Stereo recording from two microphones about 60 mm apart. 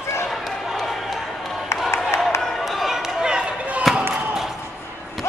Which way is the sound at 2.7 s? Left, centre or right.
Centre.